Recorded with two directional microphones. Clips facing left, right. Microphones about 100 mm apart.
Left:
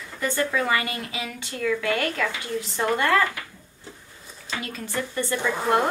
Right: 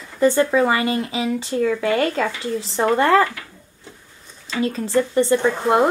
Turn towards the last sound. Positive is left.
turn(degrees=0)  # may be behind; listen again after turning